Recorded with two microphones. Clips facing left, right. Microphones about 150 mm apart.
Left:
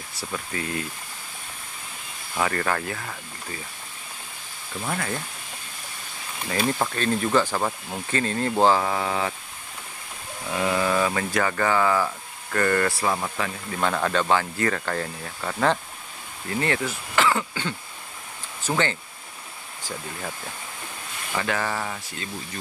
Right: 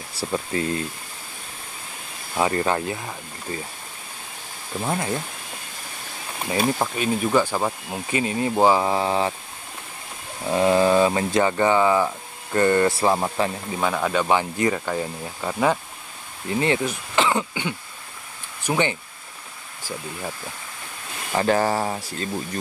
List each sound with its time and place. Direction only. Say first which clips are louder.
0.2 s speech: right 7 dB; 30° right (ahead or behind)
2.3 s speech: right 4 dB; 20° right (ahead or behind)
4.8 s speech: right 4 dB; 20° right (ahead or behind)
6.8 s speech: right 1 dB; 10° right (ahead or behind)
8.8 s speech: right 4 dB; 25° right (ahead or behind)
10.5 s speech: right 6 dB; 30° right (ahead or behind)
13.7 s speech: right 1 dB; 10° right (ahead or behind)
21.4 s speech: right 7 dB; 35° right (ahead or behind)